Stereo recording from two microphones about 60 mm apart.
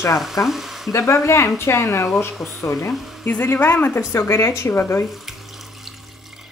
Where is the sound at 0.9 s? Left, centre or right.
Left.